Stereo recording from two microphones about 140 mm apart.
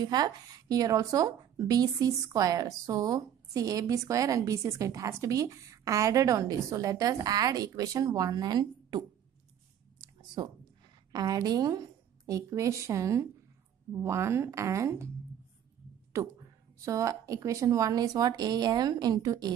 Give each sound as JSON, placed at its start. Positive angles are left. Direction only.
{"t": 0.0, "sound": "a woman's voice", "side_deg": -30}
{"t": 9.9, "sound": "a sound", "side_deg": -30}
{"t": 11.1, "sound": "a woman's voice", "side_deg": -25}
{"t": 16.1, "sound": "a woman's voice", "side_deg": -20}